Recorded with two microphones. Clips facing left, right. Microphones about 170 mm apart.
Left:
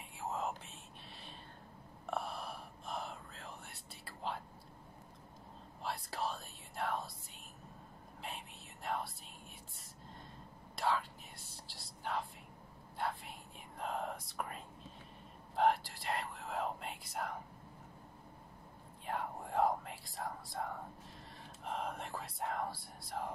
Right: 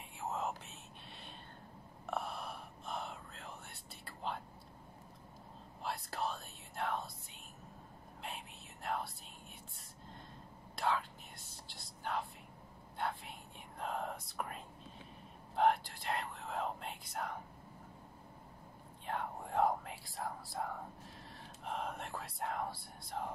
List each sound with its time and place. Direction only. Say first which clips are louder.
0.1 s whispering: even; centre (ahead or behind)
2.0 s whispering: even; centre (ahead or behind)
5.8 s whispering: even; centre (ahead or behind)
8.2 s whispering: even; centre (ahead or behind)
10.8 s whispering: even; centre (ahead or behind)
19.0 s whispering: even; centre (ahead or behind)